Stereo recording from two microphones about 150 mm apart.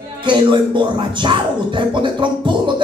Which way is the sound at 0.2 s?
30° right (ahead or behind).